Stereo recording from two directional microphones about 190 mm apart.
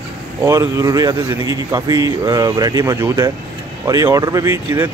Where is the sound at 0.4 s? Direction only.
15° right (ahead or behind).